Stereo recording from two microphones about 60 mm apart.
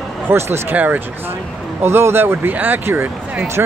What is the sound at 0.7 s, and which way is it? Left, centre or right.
Speech, right.